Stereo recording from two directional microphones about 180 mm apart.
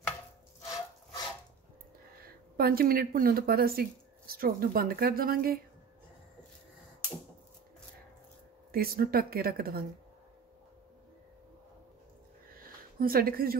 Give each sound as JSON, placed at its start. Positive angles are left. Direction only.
{"t": 2.1, "sound": "speech", "side_deg": -55}
{"t": 8.7, "sound": "speech", "side_deg": -55}
{"t": 12.5, "sound": "a sound", "side_deg": -55}